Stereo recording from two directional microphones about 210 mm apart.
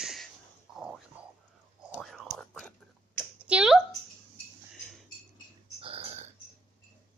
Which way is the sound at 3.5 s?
5° right (ahead or behind).